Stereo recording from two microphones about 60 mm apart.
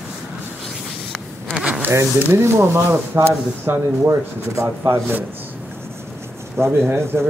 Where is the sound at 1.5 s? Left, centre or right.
Centre.